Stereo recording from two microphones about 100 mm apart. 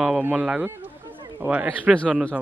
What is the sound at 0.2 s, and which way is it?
Speech, 10° right (ahead or behind).